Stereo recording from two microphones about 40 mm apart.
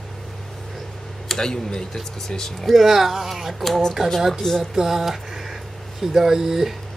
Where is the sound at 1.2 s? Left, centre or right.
Centre.